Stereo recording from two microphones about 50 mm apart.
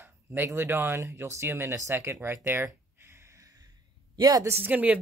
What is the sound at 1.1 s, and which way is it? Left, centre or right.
Speech, right.